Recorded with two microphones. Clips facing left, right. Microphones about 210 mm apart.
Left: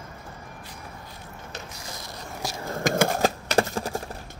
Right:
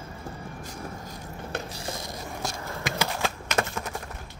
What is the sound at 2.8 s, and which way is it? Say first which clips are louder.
Typing: left 8 dB; 45° left (ahead or behind).